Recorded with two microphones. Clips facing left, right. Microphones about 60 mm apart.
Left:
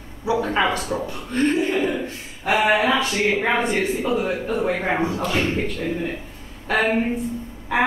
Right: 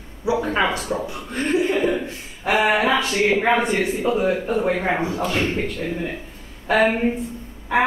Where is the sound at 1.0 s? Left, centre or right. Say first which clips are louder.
Left 4 dB; centre.